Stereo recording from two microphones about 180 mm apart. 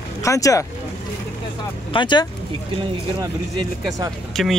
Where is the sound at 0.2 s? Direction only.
15° left (ahead or behind).